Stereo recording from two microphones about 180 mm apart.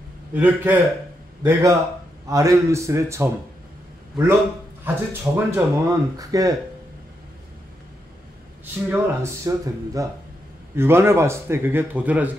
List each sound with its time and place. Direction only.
0.3 s a man's voice: 10° right (ahead or behind)
4.8 s speech: 15° right (ahead or behind)
8.8 s speech: 15° right (ahead or behind)